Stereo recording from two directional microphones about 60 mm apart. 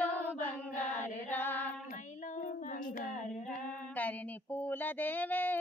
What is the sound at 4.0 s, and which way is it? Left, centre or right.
Speech, left.